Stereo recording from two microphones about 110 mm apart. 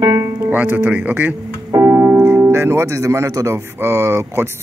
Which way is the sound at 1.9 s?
25° right (ahead or behind).